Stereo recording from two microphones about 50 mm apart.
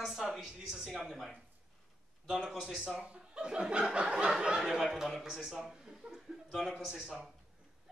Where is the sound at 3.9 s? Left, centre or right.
Centre.